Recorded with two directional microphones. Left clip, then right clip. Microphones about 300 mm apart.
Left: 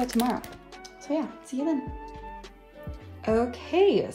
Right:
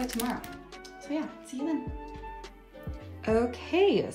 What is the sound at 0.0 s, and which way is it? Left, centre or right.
Speech, centre.